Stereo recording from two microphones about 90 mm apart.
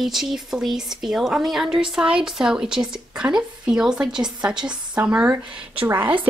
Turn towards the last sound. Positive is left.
turn(degrees=-20)  # may be behind; listen again after turning